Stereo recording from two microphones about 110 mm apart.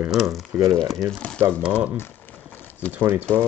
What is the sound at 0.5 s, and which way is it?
Speech, 25° right (ahead or behind).